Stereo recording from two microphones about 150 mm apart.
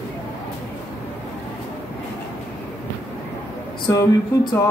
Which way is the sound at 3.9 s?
20° left (ahead or behind).